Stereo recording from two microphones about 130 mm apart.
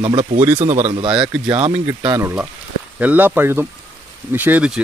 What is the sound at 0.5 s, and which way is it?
Speech, 60° right (ahead or behind).